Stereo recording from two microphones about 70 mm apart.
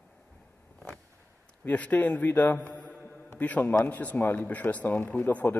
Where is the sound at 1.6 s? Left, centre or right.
Left.